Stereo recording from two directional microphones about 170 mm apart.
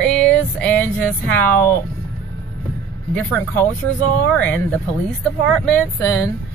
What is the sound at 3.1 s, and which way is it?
Speech, 10° left (ahead or behind).